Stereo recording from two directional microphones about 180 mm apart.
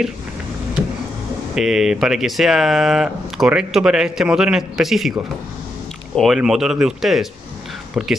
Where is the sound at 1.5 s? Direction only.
Centre (ahead or behind).